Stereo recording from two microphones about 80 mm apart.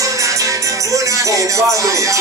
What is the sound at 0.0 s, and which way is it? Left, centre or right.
Music, right.